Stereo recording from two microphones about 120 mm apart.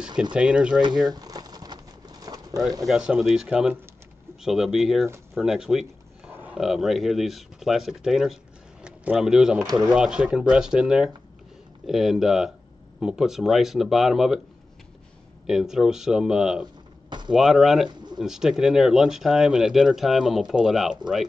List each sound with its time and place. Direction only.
0.2 s speech: 10° right (ahead or behind)
1.1 s bird: 30° right (ahead or behind)
2.9 s speech: 5° right (ahead or behind)
5.3 s a sound: centre (ahead or behind)
6.6 s speech: centre (ahead or behind)
15.4 s speech: 5° right (ahead or behind)